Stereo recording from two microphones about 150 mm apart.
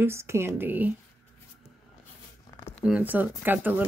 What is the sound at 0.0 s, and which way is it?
Speech, 15° right (ahead or behind).